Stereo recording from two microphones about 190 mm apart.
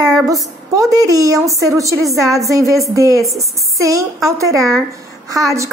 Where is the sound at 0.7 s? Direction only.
20° right (ahead or behind).